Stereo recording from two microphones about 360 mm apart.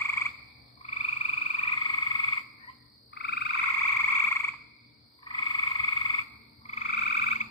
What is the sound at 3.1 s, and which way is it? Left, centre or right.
Croak, left.